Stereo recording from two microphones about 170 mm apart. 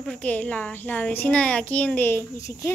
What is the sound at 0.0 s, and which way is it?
A child's voice, 5° left (ahead or behind).